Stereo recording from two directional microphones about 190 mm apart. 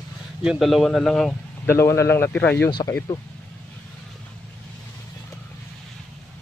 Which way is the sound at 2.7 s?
25° left (ahead or behind).